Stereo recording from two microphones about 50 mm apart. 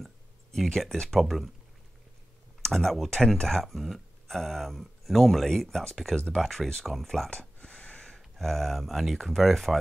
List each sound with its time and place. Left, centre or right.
0.0 s a sound: centre
0.7 s speech: centre
1.2 s speech: centre
2.6 s speech: centre
7.2 s a sound: left
8.2 s speech: centre